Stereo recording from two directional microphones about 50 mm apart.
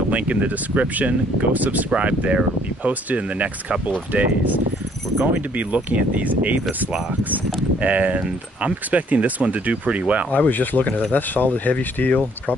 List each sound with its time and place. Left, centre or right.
0.1 s speech: right
7.8 s speech: right
10.3 s speech: left